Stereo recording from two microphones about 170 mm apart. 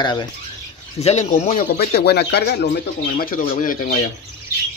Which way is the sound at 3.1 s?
55° left (ahead or behind).